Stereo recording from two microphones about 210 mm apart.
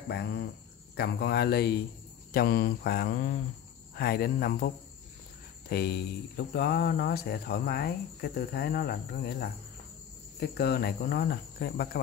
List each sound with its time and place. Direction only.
0.1 s speech: 50° left (ahead or behind)
5.7 s speech: 50° left (ahead or behind)